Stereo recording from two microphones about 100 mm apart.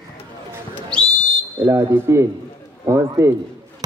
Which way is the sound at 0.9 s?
10° left (ahead or behind).